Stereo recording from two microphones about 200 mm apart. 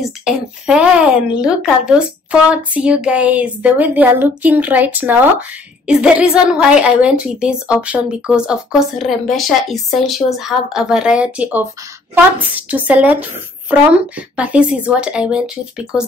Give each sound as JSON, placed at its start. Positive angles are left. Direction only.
{"t": 0.2, "sound": "a woman's voice", "side_deg": -5}